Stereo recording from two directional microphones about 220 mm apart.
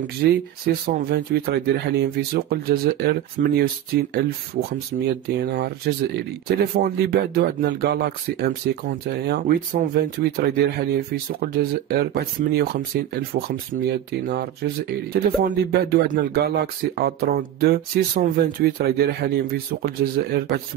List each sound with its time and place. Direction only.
0.0 s speech: 45° right (ahead or behind)